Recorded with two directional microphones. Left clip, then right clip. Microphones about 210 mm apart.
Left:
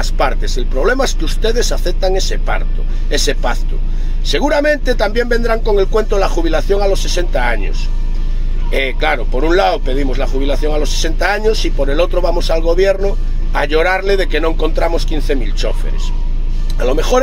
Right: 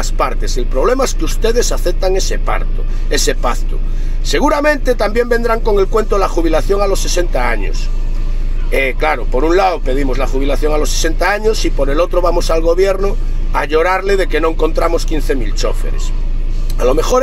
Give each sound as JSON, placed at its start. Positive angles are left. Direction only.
{"t": 0.0, "sound": "speech", "side_deg": -10}
{"t": 8.7, "sound": "speech", "side_deg": -5}
{"t": 16.7, "sound": "speech", "side_deg": -10}